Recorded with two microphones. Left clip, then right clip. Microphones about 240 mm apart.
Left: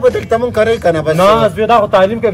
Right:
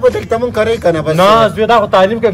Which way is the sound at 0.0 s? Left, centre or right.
Centre.